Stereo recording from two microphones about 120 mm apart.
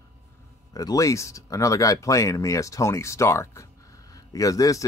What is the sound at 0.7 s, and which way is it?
Speech, 30° left (ahead or behind).